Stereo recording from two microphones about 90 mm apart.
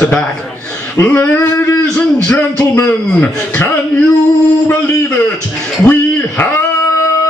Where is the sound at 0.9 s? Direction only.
25° left (ahead or behind).